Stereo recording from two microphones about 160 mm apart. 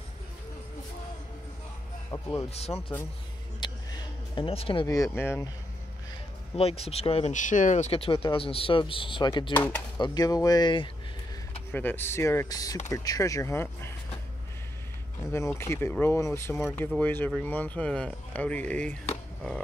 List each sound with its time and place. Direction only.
2.0 s speech: 20° left (ahead or behind)
2.5 s speech: 40° left (ahead or behind)
3.6 s a sound: 25° left (ahead or behind)
4.8 s speech: 20° left (ahead or behind)
6.5 s speech: 40° left (ahead or behind)
9.5 s speech: 10° left (ahead or behind)
9.9 s speech: 25° left (ahead or behind)
11.7 s speech: 10° left (ahead or behind)
15.3 s speech: 15° left (ahead or behind)